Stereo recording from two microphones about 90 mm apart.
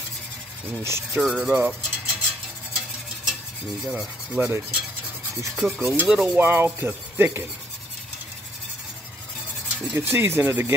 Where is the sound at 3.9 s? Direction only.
15° right (ahead or behind).